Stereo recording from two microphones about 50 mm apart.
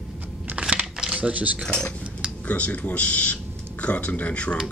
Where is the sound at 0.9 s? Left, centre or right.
Centre.